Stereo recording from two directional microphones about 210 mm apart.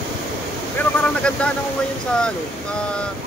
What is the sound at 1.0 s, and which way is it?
Speech, 5° left (ahead or behind).